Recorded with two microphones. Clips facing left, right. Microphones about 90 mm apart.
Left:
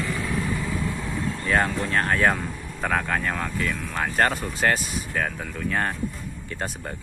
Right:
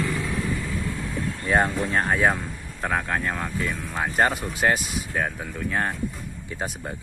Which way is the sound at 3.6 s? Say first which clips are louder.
Even; 15° right (ahead or behind).